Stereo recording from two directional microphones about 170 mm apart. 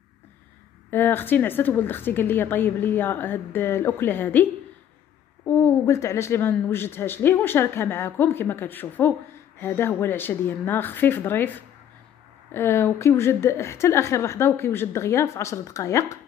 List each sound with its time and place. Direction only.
0.8 s a woman's voice: 10° left (ahead or behind)
12.5 s a woman's voice: 15° left (ahead or behind)